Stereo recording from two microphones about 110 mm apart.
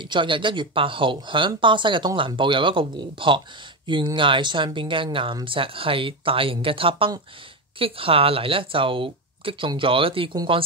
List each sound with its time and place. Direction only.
0.0 s speech: 50° right (ahead or behind)